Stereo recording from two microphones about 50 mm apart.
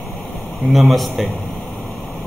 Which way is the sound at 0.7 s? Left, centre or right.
Centre.